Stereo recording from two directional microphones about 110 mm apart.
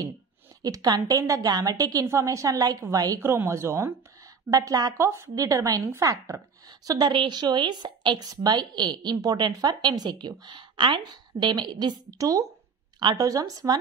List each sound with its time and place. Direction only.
0.6 s a woman's voice: 35° right (ahead or behind)
3.2 s a woman's voice: 20° right (ahead or behind)